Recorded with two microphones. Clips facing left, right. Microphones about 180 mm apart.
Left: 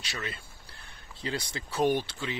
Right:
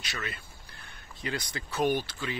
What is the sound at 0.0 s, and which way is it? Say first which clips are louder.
Speech: even; 30° left (ahead or behind).